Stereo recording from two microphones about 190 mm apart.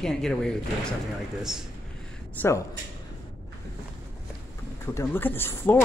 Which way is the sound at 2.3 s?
15° left (ahead or behind).